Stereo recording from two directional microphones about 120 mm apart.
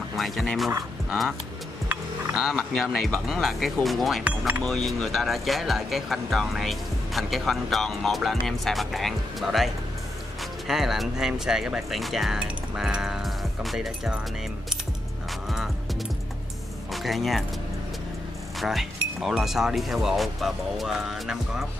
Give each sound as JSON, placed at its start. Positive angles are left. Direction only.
{"t": 0.1, "sound": "speech", "side_deg": 0}
{"t": 2.3, "sound": "speech", "side_deg": 0}
{"t": 10.7, "sound": "speech", "side_deg": -5}
{"t": 16.9, "sound": "speech", "side_deg": 0}
{"t": 18.6, "sound": "speech", "side_deg": 0}